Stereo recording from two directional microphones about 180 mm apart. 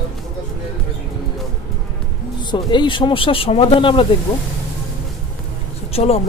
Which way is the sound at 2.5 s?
25° left (ahead or behind).